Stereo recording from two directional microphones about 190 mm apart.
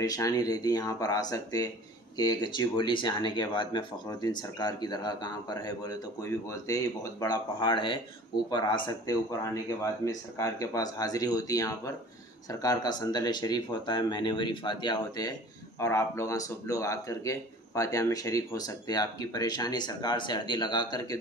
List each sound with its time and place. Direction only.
0.0 s speech: 20° left (ahead or behind)